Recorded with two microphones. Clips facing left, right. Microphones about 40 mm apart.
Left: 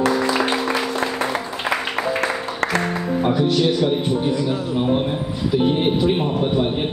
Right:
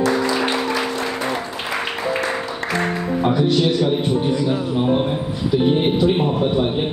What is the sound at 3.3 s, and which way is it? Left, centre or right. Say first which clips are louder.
A man's voice: right 1 dB; centre.